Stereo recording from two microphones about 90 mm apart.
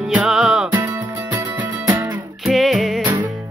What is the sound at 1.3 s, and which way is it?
Music, 25° right (ahead or behind).